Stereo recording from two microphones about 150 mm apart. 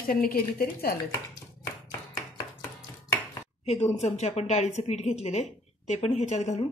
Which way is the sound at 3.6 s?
45° left (ahead or behind).